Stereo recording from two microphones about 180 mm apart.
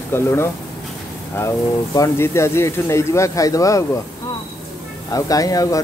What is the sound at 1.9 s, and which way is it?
Speech, 15° left (ahead or behind).